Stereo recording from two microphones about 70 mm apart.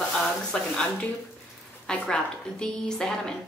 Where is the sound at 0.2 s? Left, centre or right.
Centre.